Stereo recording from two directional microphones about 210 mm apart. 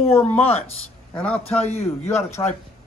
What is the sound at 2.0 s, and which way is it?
Speech, 10° left (ahead or behind).